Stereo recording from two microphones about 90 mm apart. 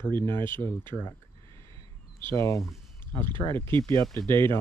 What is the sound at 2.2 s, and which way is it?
Speech, 35° left (ahead or behind).